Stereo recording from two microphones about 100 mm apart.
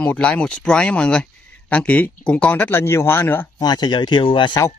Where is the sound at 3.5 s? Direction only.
45° left (ahead or behind).